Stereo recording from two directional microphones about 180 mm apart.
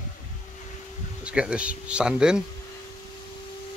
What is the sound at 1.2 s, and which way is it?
Speech, 5° right (ahead or behind).